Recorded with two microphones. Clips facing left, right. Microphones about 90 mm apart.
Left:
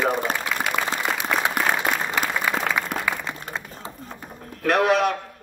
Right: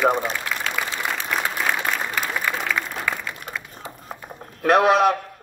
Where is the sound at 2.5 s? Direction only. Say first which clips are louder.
Left 1 dB; 5° left (ahead or behind).